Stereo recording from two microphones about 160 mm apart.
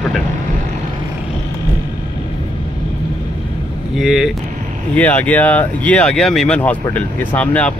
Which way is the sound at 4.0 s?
Centre (ahead or behind).